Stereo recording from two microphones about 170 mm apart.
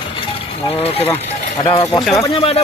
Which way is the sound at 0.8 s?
35° left (ahead or behind).